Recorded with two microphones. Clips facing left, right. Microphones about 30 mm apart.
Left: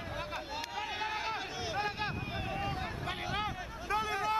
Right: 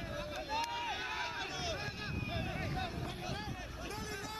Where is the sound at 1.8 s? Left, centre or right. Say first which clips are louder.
Left 8 dB; left.